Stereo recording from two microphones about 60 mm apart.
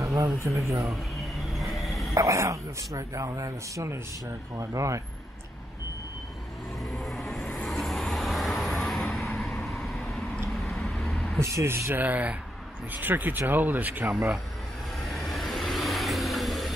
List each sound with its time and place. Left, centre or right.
0.0 s speech: right
1.1 s a sound: centre
2.1 s speech: right
6.8 s vehicle: centre
11.4 s speech: right
12.0 s speech: right
15.0 s vehicle: centre